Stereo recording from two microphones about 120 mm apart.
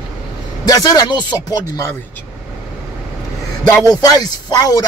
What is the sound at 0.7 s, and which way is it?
Speech, 30° left (ahead or behind).